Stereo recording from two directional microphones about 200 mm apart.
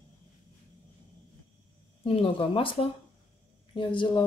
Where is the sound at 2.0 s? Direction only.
25° left (ahead or behind).